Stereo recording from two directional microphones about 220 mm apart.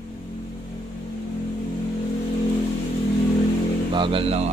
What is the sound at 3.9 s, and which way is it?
Speech, 20° right (ahead or behind).